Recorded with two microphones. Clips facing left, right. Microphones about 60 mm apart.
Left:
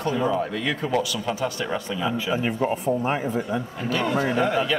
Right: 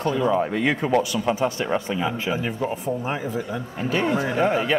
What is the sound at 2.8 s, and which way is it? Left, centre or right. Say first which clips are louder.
Speech: left 3 dB; centre.